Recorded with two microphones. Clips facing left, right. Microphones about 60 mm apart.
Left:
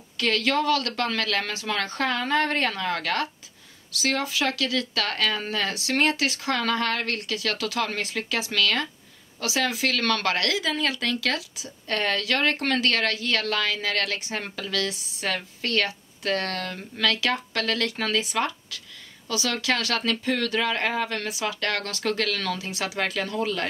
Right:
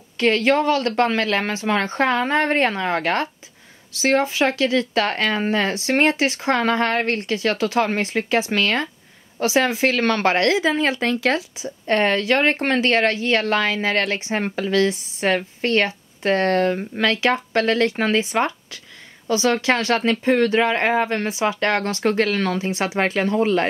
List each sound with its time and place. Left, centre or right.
0.2 s speech: right